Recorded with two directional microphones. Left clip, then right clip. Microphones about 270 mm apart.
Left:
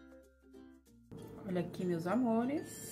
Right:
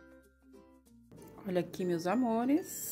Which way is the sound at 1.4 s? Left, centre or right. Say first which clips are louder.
Right 5 dB; right.